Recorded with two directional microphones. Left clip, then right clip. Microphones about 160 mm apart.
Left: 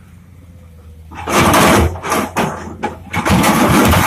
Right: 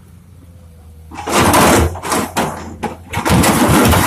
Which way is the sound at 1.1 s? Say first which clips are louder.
Even; 25° right (ahead or behind).